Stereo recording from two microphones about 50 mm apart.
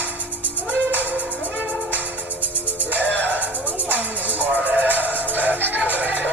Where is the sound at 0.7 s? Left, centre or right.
Right.